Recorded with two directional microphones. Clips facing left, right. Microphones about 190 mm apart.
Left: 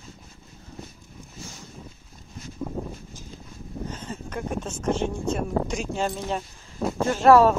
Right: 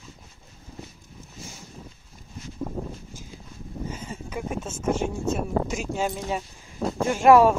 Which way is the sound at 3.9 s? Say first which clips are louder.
Even; 10° right (ahead or behind).